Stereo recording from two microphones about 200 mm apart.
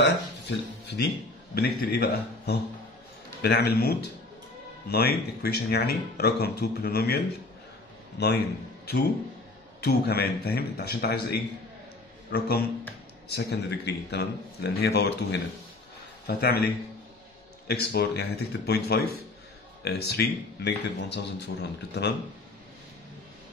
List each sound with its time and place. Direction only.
0.0 s speech: 55° left (ahead or behind)
8.2 s a man's voice: 60° left (ahead or behind)
9.8 s a man's voice: 55° left (ahead or behind)
17.6 s a man's voice: 55° left (ahead or behind)